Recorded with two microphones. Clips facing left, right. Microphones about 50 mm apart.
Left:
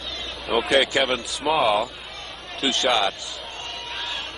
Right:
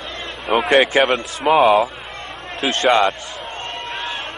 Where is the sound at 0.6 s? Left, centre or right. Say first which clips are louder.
Right 6 dB; right.